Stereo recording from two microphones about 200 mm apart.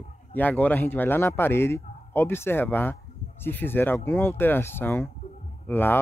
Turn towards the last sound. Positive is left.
turn(degrees=10)  # may be behind; listen again after turning